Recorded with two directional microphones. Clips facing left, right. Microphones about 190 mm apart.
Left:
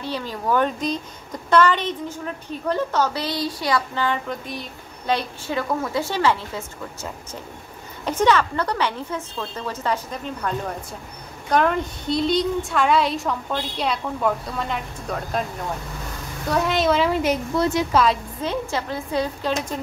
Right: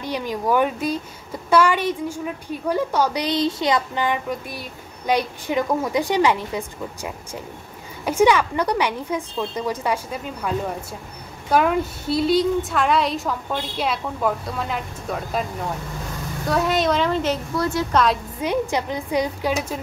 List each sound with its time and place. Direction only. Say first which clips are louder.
0.0 s a woman's voice: right 3 dB; 15° right (ahead or behind)
11.5 s a woman's voice: right 1 dB; 5° right (ahead or behind)
16.4 s a woman's voice: even; centre (ahead or behind); by 17.8 s 20° left (ahead or behind)
17.9 s a woman's voice: right 1 dB; centre (ahead or behind)
18.4 s a woman's voice: right 6 dB; 15° right (ahead or behind)